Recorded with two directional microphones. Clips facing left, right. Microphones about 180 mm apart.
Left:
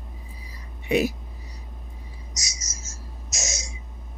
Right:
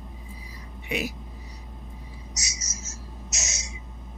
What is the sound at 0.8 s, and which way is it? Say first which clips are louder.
Speech: left 8 dB; 35° left (ahead or behind).